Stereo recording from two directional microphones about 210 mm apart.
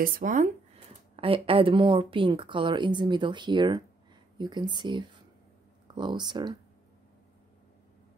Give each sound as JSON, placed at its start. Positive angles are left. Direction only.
{"t": 0.0, "sound": "speech", "side_deg": -40}
{"t": 1.1, "sound": "a woman's voice", "side_deg": -25}